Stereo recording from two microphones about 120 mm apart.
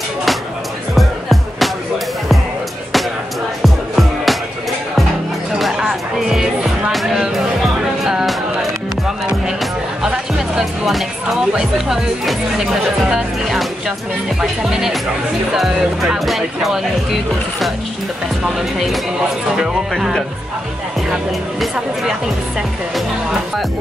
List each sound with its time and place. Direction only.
0.9 s music: centre (ahead or behind)
3.6 s music: centre (ahead or behind)
5.5 s music: 5° right (ahead or behind)
10.0 s music: 5° right (ahead or behind)
11.5 s speech: 5° right (ahead or behind)
18.4 s speech: centre (ahead or behind)